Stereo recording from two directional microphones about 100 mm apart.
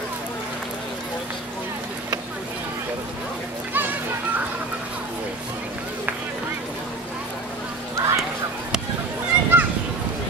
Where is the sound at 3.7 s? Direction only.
15° right (ahead or behind).